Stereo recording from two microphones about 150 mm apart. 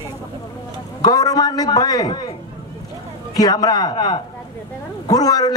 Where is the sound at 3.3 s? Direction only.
25° left (ahead or behind).